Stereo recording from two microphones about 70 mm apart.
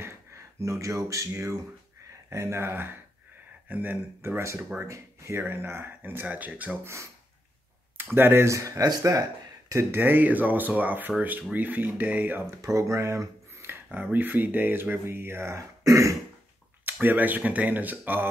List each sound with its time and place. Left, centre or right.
0.0 s a sound: right
2.2 s speech: right
4.4 s speech: right
6.8 s speech: right
9.7 s speech: right
12.4 s speech: right
14.1 s speech: right
15.8 s throat clearing: right
16.8 s speech: right